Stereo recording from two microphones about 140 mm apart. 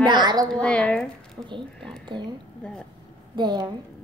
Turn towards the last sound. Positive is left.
turn(degrees=-30)  # may be behind; listen again after turning